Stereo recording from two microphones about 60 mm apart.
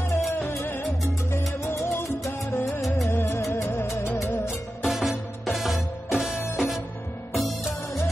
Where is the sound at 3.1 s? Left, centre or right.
Left.